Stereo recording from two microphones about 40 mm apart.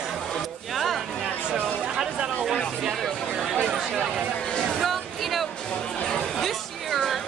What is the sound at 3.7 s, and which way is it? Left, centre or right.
Speech, centre.